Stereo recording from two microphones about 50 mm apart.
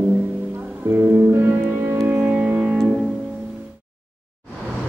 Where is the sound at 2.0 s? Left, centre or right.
Right.